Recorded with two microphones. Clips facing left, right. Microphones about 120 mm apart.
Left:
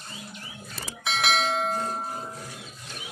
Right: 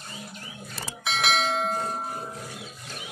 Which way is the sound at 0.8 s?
Centre (ahead or behind).